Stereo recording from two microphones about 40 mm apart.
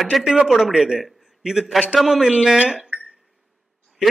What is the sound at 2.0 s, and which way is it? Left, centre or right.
Speech, centre.